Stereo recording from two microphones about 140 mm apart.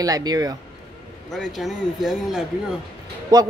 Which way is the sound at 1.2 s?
Centre (ahead or behind).